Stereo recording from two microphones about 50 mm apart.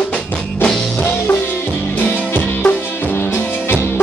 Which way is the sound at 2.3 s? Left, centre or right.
Left.